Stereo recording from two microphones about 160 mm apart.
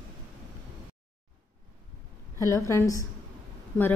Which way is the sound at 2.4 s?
20° left (ahead or behind).